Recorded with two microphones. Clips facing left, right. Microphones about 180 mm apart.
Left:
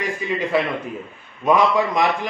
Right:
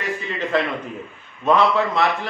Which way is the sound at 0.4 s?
10° left (ahead or behind).